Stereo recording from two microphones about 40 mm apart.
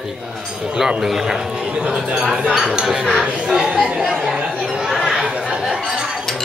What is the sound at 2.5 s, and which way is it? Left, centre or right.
Speech, centre.